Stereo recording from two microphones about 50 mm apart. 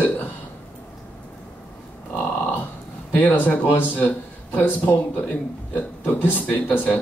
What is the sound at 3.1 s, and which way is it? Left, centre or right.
Speech, left.